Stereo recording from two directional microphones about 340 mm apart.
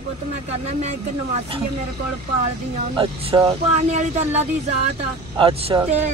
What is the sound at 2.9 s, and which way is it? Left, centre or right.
Speech, centre.